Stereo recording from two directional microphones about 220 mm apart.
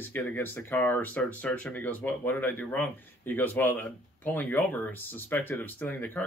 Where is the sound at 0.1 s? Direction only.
10° left (ahead or behind).